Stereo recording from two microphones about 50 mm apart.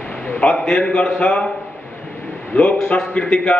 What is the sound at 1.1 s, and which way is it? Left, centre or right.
Speech, left.